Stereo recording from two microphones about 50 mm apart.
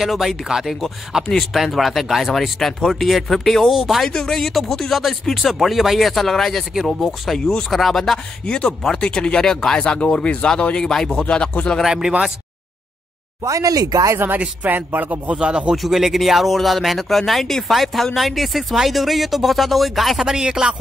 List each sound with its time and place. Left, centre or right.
0.0 s speech: centre
1.1 s speech: centre
3.7 s speech: centre
4.0 s speech: centre
6.7 s speech: centre
8.5 s speech: left
11.8 s speech: centre
13.4 s speech: right
14.4 s speech: right
15.3 s a man's voice: centre
15.7 s speech: centre
20.2 s speech: centre